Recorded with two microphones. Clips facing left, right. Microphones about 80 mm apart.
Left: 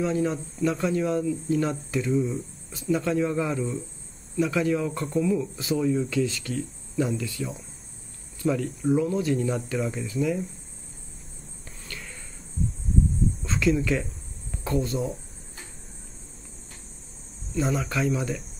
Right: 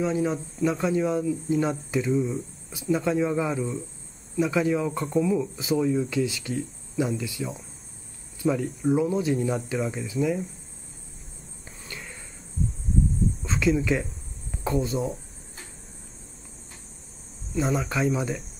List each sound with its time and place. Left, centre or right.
0.0 s speech: centre
8.5 s speech: centre
11.8 s a sound: centre
13.4 s cricket: centre
14.5 s speech: centre
17.6 s speech: centre